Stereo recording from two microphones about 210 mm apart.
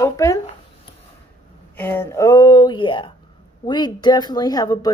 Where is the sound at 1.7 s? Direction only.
10° left (ahead or behind).